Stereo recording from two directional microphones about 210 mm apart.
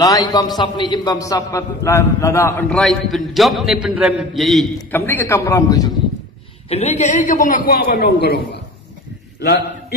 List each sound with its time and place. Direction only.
0.0 s a man's voice: 20° left (ahead or behind)
2.7 s a man's voice: centre (ahead or behind)
4.9 s a man's voice: 10° left (ahead or behind)
6.7 s a man's voice: 30° left (ahead or behind)
9.4 s a man's voice: 50° left (ahead or behind)